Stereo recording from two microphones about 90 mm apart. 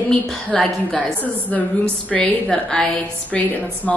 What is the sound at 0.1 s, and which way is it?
Speech, 10° left (ahead or behind).